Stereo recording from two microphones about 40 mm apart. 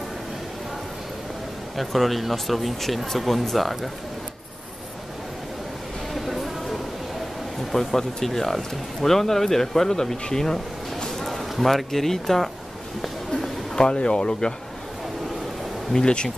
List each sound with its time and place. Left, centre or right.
1.8 s speech: centre
6.1 s a sound: centre
7.7 s speech: centre
13.7 s speech: left
15.9 s speech: centre